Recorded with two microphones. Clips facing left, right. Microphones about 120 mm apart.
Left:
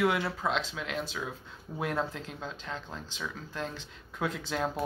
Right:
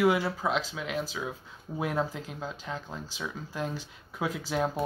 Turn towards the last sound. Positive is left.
turn(degrees=-5)  # may be behind; listen again after turning